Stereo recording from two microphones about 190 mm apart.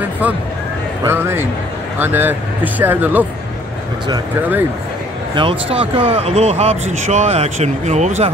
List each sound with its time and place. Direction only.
1.0 s speech: 10° right (ahead or behind)
5.3 s speech: 25° right (ahead or behind)